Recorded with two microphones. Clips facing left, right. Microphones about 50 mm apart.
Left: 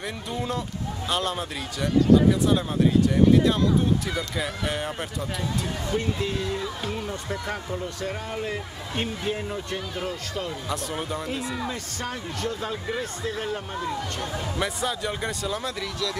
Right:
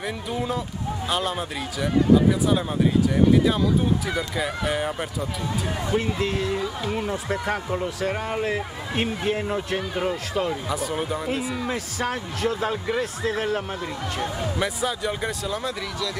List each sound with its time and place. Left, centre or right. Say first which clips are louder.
0.3 s a man's voice: right 1 dB; centre
6.9 s a man's voice: right 4 dB; centre
10.7 s a man's voice: right 3 dB; centre
12.6 s a man's voice: right 5 dB; centre
13.0 s speech: right 4 dB; centre
14.6 s speech: right 1 dB; centre